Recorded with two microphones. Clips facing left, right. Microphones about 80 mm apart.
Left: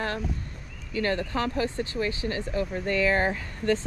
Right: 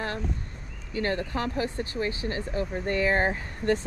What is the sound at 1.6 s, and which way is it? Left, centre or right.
Speech, right.